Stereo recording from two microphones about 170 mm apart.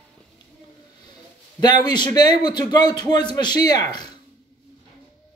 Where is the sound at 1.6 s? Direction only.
25° left (ahead or behind).